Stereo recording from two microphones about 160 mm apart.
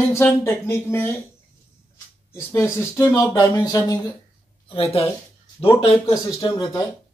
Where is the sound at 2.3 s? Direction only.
15° left (ahead or behind).